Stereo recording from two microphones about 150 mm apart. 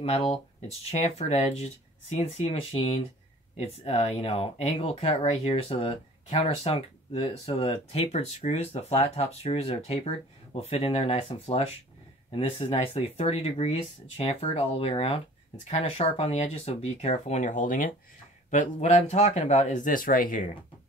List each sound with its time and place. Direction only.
0.0 s speech: 45° left (ahead or behind); by 17.9 s 65° left (ahead or behind)
18.5 s speech: 55° left (ahead or behind)